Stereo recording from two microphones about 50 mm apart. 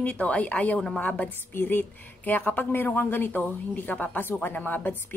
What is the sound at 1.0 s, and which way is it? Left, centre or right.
Speech, left.